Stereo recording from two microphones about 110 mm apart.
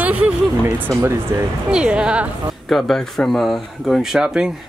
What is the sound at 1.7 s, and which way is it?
Speech, 10° right (ahead or behind).